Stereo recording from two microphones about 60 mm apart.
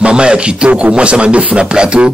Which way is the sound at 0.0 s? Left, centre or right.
Centre.